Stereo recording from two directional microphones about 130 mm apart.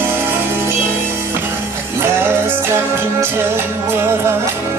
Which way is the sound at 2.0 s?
15° right (ahead or behind).